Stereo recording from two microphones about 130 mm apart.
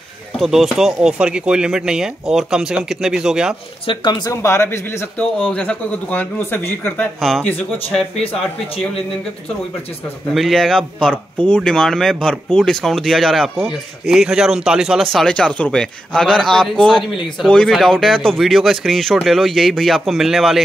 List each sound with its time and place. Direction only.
0.4 s speech: centre (ahead or behind)
3.8 s speech: 40° left (ahead or behind)
4.3 s speech: 20° left (ahead or behind)
5.4 s speech: 10° left (ahead or behind)
7.2 s speech: centre (ahead or behind)
8.2 s speech: 45° left (ahead or behind)
10.3 s speech: centre (ahead or behind)